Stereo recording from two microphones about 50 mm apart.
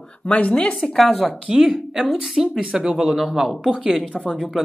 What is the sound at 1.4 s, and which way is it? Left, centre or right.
Speech, centre.